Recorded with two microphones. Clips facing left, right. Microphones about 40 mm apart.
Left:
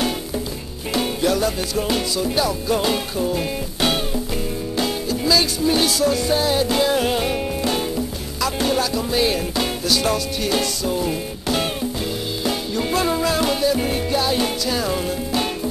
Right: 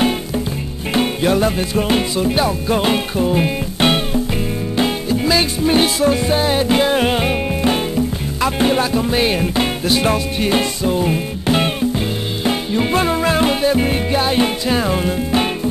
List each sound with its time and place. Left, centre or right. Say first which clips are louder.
0.9 s music: right 4 dB; right